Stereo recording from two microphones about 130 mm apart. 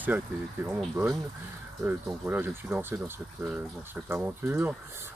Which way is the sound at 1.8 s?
15° right (ahead or behind).